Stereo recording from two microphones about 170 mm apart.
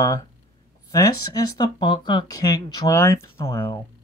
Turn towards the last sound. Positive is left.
turn(degrees=15)  # may be behind; listen again after turning